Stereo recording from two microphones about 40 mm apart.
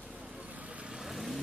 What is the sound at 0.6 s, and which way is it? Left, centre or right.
Vehicle, right.